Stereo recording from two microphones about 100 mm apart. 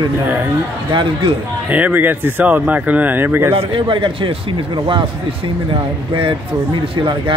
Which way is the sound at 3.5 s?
60° right (ahead or behind).